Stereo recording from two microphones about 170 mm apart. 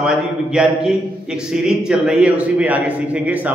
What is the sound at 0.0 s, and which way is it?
A man's voice, 5° right (ahead or behind).